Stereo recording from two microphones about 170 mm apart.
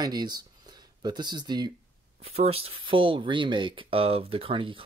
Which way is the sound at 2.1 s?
35° right (ahead or behind).